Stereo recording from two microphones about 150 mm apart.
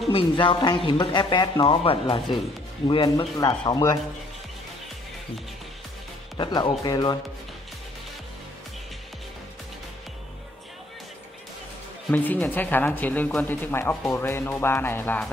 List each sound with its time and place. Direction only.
0.1 s speech: 35° left (ahead or behind)
6.3 s speech: 30° left (ahead or behind)
12.1 s speech: 10° left (ahead or behind)